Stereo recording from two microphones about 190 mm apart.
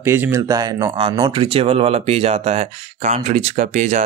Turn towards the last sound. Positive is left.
turn(degrees=-40)  # may be behind; listen again after turning